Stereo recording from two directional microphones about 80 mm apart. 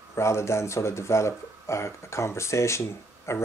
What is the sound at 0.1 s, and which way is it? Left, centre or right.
Speech, left.